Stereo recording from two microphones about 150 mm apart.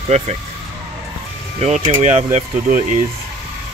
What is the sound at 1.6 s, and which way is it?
Speech, 45° right (ahead or behind).